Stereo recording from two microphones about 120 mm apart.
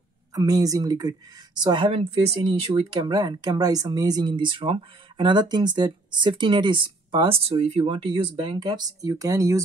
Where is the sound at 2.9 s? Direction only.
35° right (ahead or behind).